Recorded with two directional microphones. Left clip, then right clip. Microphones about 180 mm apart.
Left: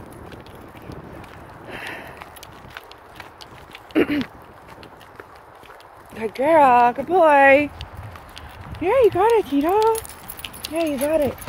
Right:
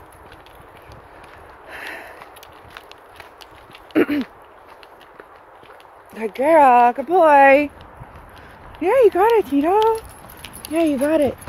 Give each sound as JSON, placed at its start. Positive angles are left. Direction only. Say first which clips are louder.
{"t": 1.7, "sound": "sniff", "louder": "even", "side_deg": -25}
{"t": 3.9, "sound": "a sound", "louder": "right 2 dB", "side_deg": -25}
{"t": 6.1, "sound": "speech", "louder": "right 2 dB", "side_deg": -20}
{"t": 8.8, "sound": "speech", "louder": "right 2 dB", "side_deg": -25}
{"t": 10.7, "sound": "speech", "louder": "right 3 dB", "side_deg": -60}